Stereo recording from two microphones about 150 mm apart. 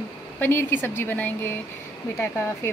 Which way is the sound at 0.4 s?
15° left (ahead or behind).